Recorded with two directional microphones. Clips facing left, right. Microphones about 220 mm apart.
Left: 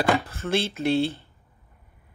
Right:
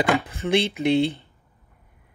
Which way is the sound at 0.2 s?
15° right (ahead or behind).